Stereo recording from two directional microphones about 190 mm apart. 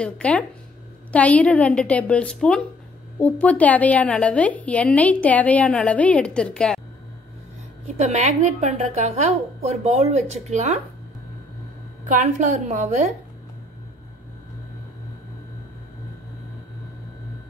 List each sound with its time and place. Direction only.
0.0 s a woman's voice: 5° left (ahead or behind)
7.8 s a woman's voice: 40° right (ahead or behind)
12.1 s a woman's voice: 40° right (ahead or behind)